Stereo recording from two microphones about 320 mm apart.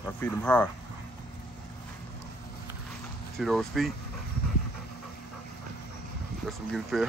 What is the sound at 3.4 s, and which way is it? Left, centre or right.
Speech, centre.